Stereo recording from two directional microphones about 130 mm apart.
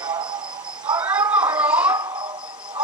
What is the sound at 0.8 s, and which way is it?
Cat, 10° right (ahead or behind).